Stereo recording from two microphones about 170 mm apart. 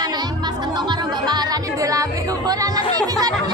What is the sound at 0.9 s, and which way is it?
Music, 25° right (ahead or behind).